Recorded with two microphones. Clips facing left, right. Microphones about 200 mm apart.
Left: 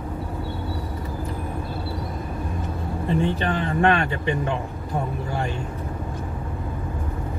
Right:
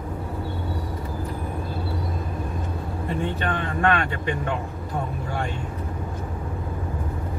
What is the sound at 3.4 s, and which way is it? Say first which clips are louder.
Speech: left 3 dB; 25° left (ahead or behind).